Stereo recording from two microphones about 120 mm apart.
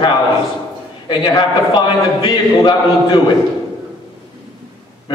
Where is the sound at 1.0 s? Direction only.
35° left (ahead or behind).